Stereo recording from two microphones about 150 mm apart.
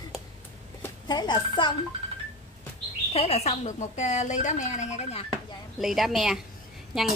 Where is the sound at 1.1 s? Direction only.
30° left (ahead or behind).